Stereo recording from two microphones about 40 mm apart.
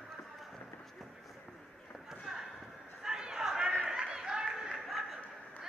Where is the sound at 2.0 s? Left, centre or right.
Centre.